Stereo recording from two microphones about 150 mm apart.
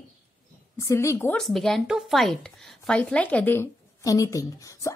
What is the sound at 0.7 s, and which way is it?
Speech, 20° left (ahead or behind).